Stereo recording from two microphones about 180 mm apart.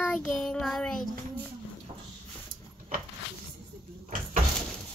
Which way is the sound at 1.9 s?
35° right (ahead or behind).